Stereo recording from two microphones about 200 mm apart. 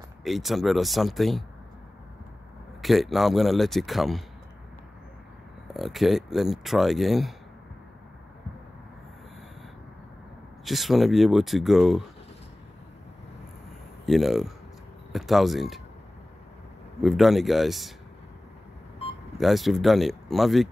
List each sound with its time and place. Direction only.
0.2 s speech: centre (ahead or behind)
2.8 s speech: centre (ahead or behind)
5.7 s speech: centre (ahead or behind)
10.6 s speech: centre (ahead or behind)
14.0 s speech: centre (ahead or behind)
17.0 s speech: centre (ahead or behind)
19.3 s speech: centre (ahead or behind)